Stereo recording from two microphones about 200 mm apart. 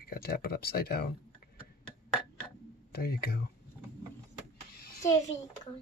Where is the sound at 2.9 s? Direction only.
50° left (ahead or behind).